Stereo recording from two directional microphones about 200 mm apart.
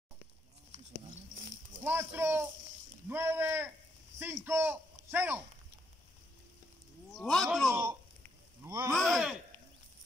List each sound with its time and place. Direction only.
1.8 s speech: 10° right (ahead or behind)
7.2 s speech: centre (ahead or behind)
8.6 s speech: 15° right (ahead or behind)
8.9 s speech: centre (ahead or behind)